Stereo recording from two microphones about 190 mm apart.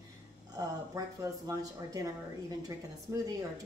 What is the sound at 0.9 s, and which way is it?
A woman's voice, 15° right (ahead or behind).